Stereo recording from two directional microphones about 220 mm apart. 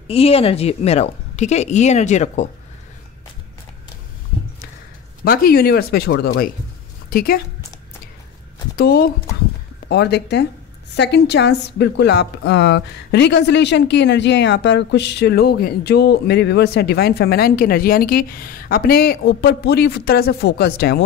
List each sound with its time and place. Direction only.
0.1 s a woman's voice: 25° left (ahead or behind)
5.2 s a woman's voice: 40° left (ahead or behind)
8.7 s a woman's voice: 45° left (ahead or behind)